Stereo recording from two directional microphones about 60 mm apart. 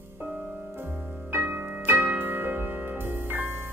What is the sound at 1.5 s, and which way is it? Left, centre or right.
Music, right.